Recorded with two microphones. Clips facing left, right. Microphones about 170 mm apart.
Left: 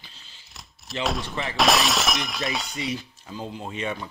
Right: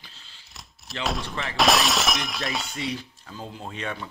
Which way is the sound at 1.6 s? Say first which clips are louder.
Even; centre (ahead or behind).